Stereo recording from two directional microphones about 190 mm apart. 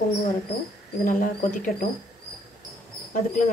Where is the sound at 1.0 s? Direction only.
45° left (ahead or behind).